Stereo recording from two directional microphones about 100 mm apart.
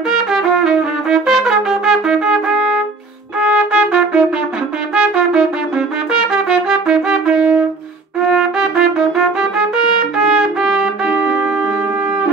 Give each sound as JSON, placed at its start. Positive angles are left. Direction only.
{"t": 0.3, "sound": "trumpet", "side_deg": -5}
{"t": 8.2, "sound": "music", "side_deg": -5}